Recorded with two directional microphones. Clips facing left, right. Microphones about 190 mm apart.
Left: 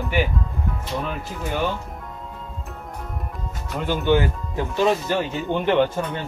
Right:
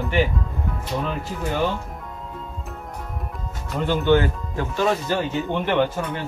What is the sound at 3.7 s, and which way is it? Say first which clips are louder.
Speech: right 2 dB; centre (ahead or behind).